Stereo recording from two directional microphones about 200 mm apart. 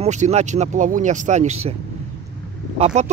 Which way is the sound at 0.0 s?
35° right (ahead or behind).